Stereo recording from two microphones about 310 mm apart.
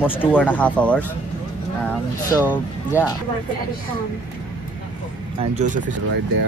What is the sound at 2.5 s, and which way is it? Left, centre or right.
Speech, centre.